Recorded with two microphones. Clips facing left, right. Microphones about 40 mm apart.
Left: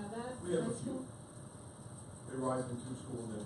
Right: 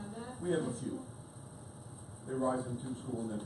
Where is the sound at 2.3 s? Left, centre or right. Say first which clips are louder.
Right 3 dB; right.